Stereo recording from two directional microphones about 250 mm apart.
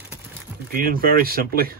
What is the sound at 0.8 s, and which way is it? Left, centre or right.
Speech, right.